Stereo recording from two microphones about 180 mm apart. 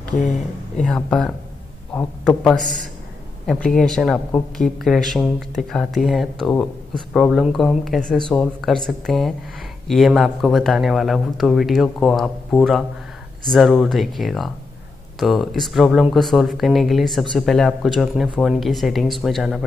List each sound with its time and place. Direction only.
0.1 s speech: 45° left (ahead or behind)
0.8 s a man's voice: 5° left (ahead or behind)
2.6 s a man's voice: 45° right (ahead or behind)
3.4 s speech: 5° left (ahead or behind)